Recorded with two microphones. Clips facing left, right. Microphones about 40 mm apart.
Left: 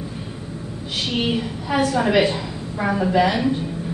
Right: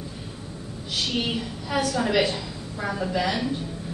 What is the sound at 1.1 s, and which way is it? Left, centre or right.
A woman's voice, centre.